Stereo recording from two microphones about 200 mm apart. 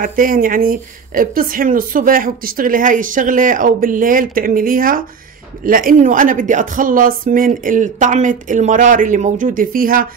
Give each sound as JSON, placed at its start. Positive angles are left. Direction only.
{"t": 0.0, "sound": "a woman's voice", "side_deg": -45}